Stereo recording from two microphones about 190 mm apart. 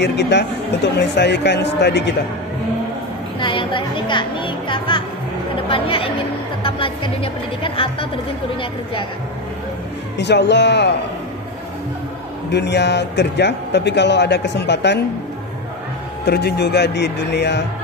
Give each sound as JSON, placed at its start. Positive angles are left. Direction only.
{"t": 0.0, "sound": "a man's voice", "side_deg": 65}
{"t": 3.3, "sound": "music", "side_deg": 25}
{"t": 5.7, "sound": "a woman's voice", "side_deg": 30}
{"t": 6.6, "sound": "music", "side_deg": 25}
{"t": 7.6, "sound": "a woman's voice", "side_deg": 30}
{"t": 10.1, "sound": "a man's voice", "side_deg": 65}
{"t": 12.4, "sound": "a man's voice", "side_deg": 65}
{"t": 16.3, "sound": "a man's voice", "side_deg": 60}